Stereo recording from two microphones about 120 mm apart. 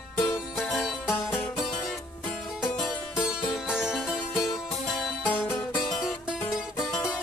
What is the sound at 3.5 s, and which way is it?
Music, 5° right (ahead or behind).